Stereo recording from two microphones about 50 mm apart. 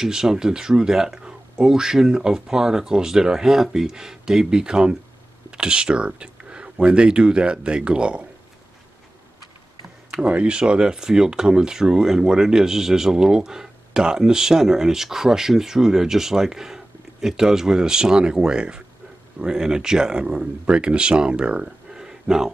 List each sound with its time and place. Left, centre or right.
0.0 s speech: centre
10.1 s speech: right